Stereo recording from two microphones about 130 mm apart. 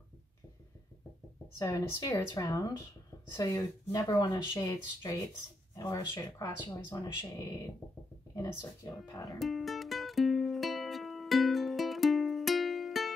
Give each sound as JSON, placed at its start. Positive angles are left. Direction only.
{"t": 1.6, "sound": "speech", "side_deg": 25}
{"t": 8.4, "sound": "speech", "side_deg": 25}
{"t": 9.4, "sound": "music", "side_deg": 0}